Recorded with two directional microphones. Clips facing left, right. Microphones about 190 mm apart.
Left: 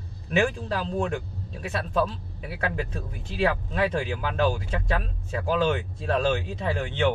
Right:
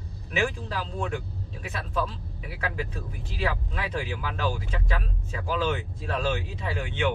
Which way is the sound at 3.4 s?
40° left (ahead or behind).